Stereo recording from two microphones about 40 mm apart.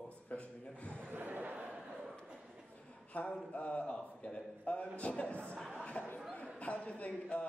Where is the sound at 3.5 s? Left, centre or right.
Left.